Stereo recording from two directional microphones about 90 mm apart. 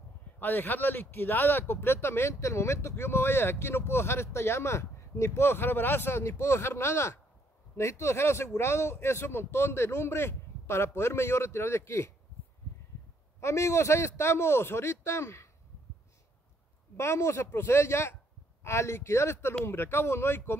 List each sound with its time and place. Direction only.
0.4 s speech: 20° left (ahead or behind)
13.4 s a man's voice: 35° left (ahead or behind)
16.9 s speech: 30° left (ahead or behind)